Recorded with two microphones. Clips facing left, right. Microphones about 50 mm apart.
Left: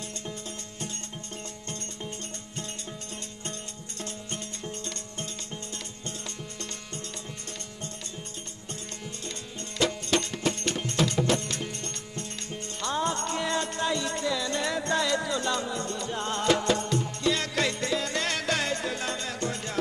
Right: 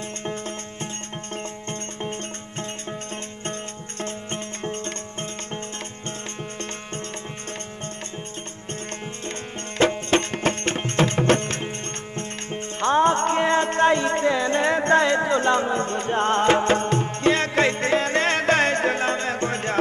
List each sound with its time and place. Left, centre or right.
0.2 s music: right
4.0 s music: right
9.8 s music: right